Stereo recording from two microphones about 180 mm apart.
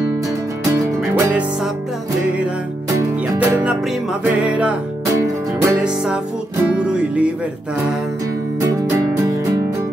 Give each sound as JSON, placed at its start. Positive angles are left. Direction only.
{"t": 1.1, "sound": "music", "side_deg": -5}
{"t": 3.3, "sound": "music", "side_deg": -10}
{"t": 8.5, "sound": "music", "side_deg": -15}